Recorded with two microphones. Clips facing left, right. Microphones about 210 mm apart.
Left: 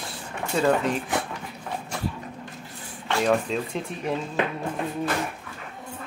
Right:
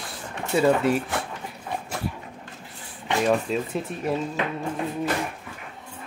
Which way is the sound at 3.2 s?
5° right (ahead or behind).